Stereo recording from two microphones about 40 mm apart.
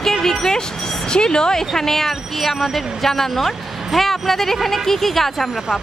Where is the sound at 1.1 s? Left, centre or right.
Left; by 5.8 s centre.